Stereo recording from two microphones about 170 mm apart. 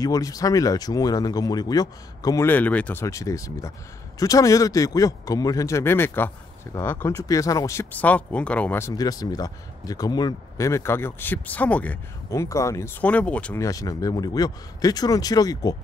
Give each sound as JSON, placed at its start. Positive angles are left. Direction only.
{"t": 0.0, "sound": "speech", "side_deg": 20}
{"t": 13.7, "sound": "speech", "side_deg": 20}